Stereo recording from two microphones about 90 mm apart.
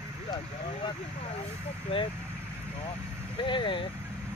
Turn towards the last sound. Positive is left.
turn(degrees=65)  # may be behind; listen again after turning